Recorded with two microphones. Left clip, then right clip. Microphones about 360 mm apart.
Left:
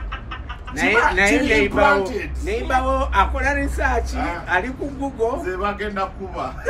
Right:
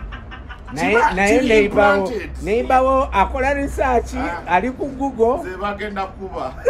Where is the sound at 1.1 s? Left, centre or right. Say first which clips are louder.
Right 2 dB; centre.